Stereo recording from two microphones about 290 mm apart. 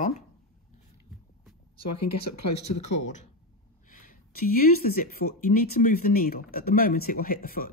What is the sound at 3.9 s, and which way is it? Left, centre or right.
Speech, left.